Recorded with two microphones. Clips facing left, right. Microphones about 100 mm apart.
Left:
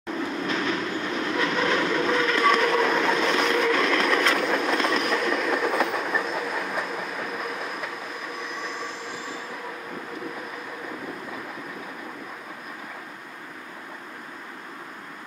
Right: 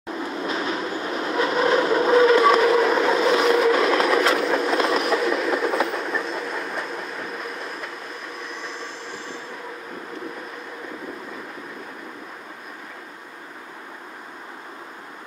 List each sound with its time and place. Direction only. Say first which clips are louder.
0.5 s train: right 2 dB; 35° right (ahead or behind)
2.2 s train: right 5 dB; 10° right (ahead or behind)